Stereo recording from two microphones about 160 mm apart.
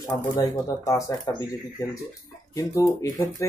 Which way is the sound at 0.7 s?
20° left (ahead or behind).